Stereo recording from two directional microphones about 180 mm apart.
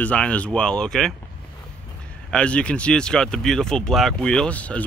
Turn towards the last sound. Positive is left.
turn(degrees=10)  # may be behind; listen again after turning